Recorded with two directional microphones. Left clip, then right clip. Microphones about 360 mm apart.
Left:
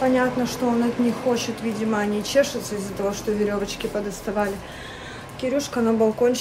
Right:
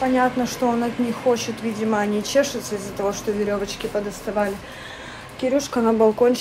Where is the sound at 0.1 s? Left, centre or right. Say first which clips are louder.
Right 1 dB; centre.